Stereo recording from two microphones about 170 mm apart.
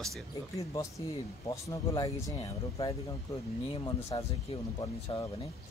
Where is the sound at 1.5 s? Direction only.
20° left (ahead or behind).